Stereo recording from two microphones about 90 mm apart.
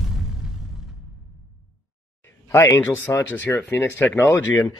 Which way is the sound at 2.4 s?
35° left (ahead or behind).